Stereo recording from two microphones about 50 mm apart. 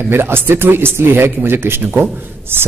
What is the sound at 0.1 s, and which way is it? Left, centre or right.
A man's voice, right.